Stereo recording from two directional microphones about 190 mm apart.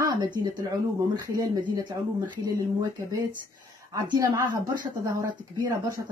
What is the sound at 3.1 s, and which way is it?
A woman's voice, 20° right (ahead or behind).